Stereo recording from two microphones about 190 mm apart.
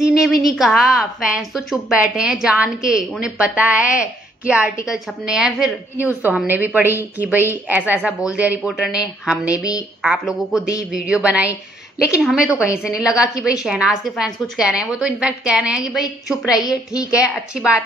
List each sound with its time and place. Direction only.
0.1 s a woman's voice: centre (ahead or behind)
9.6 s a woman's voice: 20° left (ahead or behind)
10.0 s a woman's voice: 5° right (ahead or behind)
16.5 s a woman's voice: 20° left (ahead or behind)
17.6 s a woman's voice: 5° right (ahead or behind)